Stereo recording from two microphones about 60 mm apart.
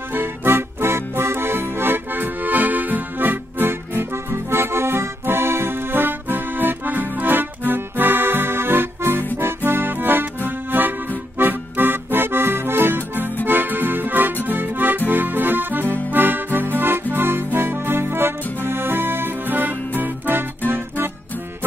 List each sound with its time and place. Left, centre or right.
0.1 s music: right
9.7 s accordion: right
11.3 s music: right
13.5 s accordion: right
16.1 s music: right